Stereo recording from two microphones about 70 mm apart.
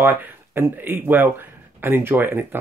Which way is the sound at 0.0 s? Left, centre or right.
Right.